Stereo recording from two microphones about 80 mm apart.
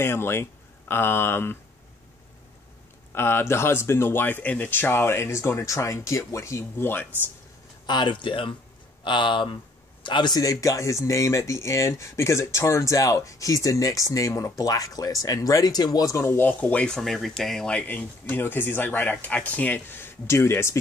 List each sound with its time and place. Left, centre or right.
0.0 s speech: left
3.2 s speech: left
6.8 s speech: left
7.8 s a man's voice: left
9.0 s speech: left
10.0 s speech: left
10.4 s speech: left
16.2 s speech: left
16.9 s speech: centre; by 20.7 s left